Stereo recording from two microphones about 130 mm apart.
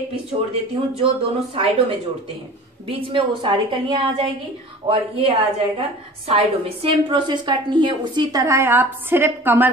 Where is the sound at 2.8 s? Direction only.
45° right (ahead or behind).